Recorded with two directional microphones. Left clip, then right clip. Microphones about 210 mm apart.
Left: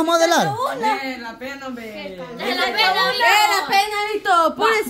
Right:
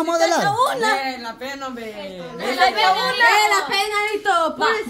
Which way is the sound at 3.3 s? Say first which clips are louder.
Left 1 dB; 40° left (ahead or behind).